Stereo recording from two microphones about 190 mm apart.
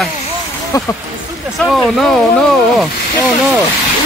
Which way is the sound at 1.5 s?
Centre (ahead or behind).